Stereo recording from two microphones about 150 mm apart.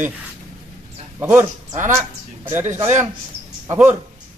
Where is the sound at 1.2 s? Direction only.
15° right (ahead or behind).